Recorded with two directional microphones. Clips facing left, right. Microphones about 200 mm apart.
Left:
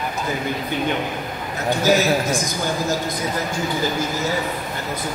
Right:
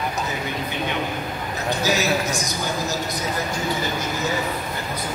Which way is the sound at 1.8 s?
50° left (ahead or behind).